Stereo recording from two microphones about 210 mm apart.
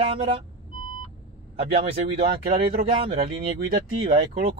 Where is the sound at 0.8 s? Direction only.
20° left (ahead or behind).